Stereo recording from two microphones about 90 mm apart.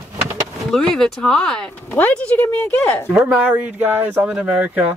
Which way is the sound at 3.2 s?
20° right (ahead or behind).